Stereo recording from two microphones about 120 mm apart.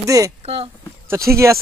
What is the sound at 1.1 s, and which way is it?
Speech, 25° right (ahead or behind).